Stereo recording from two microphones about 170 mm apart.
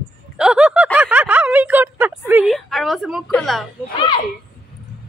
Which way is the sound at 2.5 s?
Centre (ahead or behind).